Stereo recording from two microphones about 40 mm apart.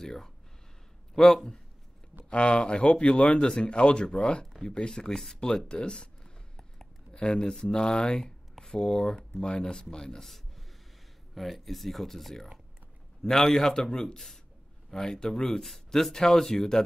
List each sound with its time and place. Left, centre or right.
0.0 s speech: centre
2.2 s speech: left
6.5 s a sound: centre
7.6 s speech: centre
11.3 s speech: centre